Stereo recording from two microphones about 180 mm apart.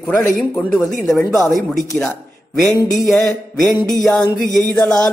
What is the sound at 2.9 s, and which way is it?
Music, centre (ahead or behind).